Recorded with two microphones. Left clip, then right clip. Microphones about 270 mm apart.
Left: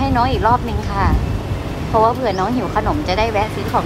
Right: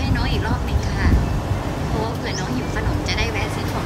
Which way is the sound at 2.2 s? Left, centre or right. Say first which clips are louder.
Left 8 dB; centre.